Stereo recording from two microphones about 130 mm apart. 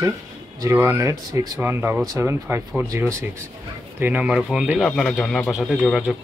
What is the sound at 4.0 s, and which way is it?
Speech, 10° right (ahead or behind).